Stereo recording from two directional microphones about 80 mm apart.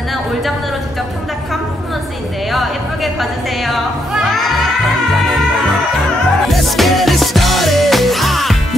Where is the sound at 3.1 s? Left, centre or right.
Centre.